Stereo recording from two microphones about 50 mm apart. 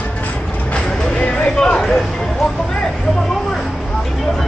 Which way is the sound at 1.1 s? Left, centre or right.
Left.